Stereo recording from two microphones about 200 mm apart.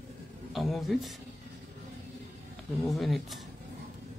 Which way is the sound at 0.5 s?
Centre (ahead or behind).